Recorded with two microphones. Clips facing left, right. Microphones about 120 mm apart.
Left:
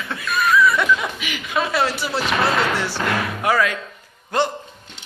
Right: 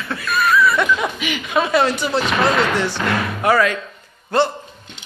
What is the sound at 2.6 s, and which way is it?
A man's voice, 10° left (ahead or behind).